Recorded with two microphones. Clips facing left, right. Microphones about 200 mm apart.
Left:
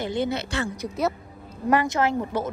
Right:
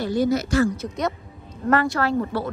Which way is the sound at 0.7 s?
5° left (ahead or behind).